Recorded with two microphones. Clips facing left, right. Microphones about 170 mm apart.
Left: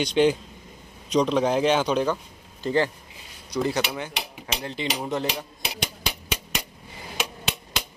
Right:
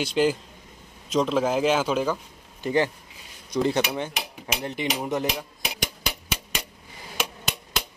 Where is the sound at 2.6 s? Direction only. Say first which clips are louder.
Even; 15° right (ahead or behind).